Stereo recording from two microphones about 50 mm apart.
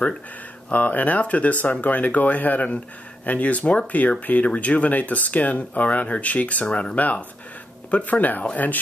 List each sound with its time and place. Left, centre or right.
0.7 s speech: left